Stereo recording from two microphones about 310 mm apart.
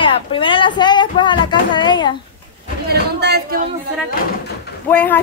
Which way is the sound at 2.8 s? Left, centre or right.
Right.